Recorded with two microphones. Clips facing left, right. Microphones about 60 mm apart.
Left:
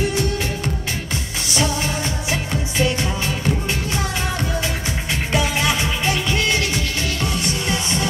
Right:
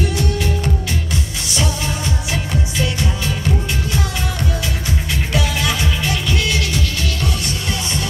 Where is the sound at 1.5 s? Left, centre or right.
Left.